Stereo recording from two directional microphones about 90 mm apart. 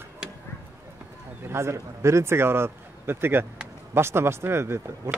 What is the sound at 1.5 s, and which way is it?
Speech, 30° right (ahead or behind).